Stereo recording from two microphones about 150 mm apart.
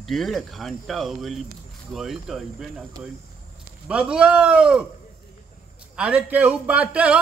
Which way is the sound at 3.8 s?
5° right (ahead or behind).